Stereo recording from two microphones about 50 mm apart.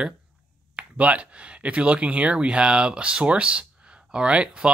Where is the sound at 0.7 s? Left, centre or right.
Right.